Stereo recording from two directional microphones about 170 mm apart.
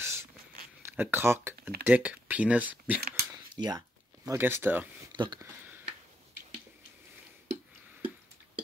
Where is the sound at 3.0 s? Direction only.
65° right (ahead or behind).